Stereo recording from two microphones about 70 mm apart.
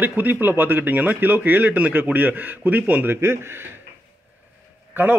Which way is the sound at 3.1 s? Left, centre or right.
Right.